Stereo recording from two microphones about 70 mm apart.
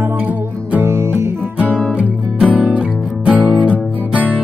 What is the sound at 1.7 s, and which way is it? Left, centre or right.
Music, centre.